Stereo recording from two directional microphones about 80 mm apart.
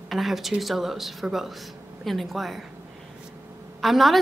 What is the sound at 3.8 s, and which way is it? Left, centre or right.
Speech, centre.